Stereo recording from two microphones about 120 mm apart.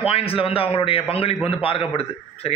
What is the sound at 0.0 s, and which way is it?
Speech, 50° left (ahead or behind).